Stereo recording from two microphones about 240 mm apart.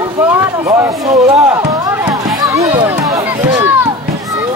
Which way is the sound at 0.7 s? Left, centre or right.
Centre.